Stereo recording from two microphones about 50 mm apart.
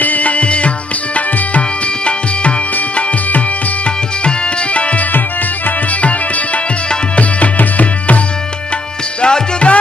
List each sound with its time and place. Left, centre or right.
0.0 s music: left
3.0 s music: left
4.7 s tabla: left
6.0 s music: left
9.2 s music: left